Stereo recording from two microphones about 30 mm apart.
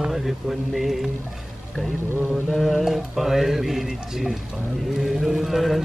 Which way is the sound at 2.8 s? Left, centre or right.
Centre.